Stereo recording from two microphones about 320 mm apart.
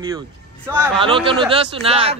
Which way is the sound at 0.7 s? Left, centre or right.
Centre.